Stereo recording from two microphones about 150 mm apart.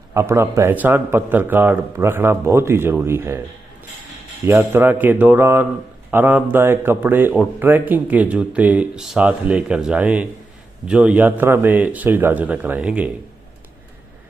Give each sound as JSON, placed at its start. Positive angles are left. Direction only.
{"t": 0.1, "sound": "a man's voice", "side_deg": -20}
{"t": 4.5, "sound": "a man's voice", "side_deg": -15}